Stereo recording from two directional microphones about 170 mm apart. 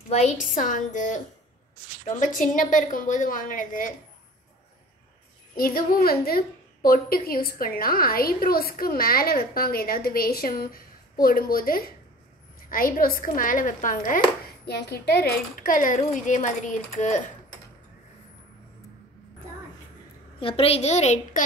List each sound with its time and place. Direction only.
0.1 s speech: 45° left (ahead or behind)
5.6 s a woman's voice: 60° left (ahead or behind)
14.7 s speech: 70° left (ahead or behind); by 17.3 s 45° left (ahead or behind)
20.3 s a child's voice: 35° left (ahead or behind)